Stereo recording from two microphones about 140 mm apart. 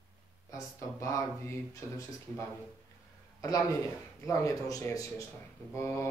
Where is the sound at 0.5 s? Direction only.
20° left (ahead or behind).